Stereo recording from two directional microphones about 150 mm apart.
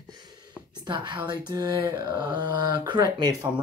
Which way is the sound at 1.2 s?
25° right (ahead or behind).